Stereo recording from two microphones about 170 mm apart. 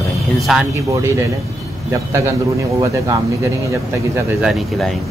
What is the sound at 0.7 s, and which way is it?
A man's voice, 15° right (ahead or behind).